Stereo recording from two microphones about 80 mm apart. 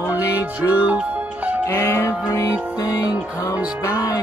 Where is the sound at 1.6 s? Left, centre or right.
Left.